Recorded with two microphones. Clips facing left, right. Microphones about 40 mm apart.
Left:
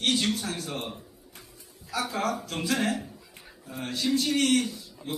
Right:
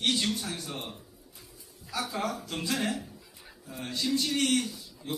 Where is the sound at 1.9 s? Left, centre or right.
Centre.